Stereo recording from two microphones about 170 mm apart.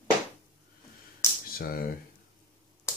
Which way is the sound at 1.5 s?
60° left (ahead or behind).